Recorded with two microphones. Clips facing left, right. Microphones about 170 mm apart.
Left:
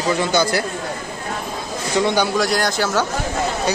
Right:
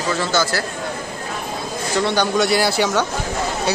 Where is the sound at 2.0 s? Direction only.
15° left (ahead or behind).